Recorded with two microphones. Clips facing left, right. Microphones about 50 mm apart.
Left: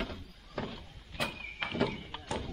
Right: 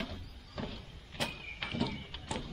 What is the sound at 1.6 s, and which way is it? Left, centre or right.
Horse, left.